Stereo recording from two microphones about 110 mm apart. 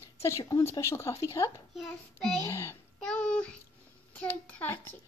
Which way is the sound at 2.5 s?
25° left (ahead or behind).